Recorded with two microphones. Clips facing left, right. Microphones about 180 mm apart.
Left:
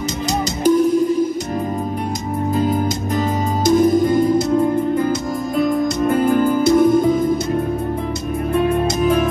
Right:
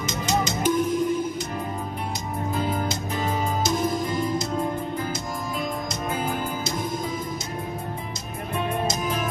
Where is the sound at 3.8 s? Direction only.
55° left (ahead or behind).